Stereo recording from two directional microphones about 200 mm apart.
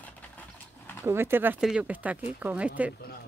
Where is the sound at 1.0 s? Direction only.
10° right (ahead or behind).